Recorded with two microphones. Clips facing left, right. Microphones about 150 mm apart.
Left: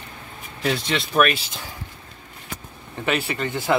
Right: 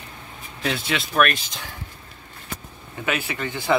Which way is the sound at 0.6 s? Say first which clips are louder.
Left 2 dB; centre (ahead or behind).